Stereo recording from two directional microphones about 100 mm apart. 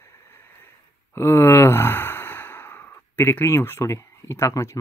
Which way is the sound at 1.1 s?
25° left (ahead or behind).